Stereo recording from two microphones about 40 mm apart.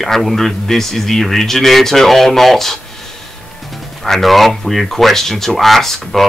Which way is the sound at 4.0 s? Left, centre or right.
Centre.